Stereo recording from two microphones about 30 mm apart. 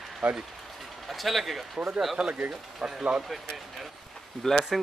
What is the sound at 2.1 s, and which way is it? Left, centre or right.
Speech, right.